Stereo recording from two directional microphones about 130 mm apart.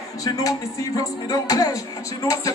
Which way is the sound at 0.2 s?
25° left (ahead or behind).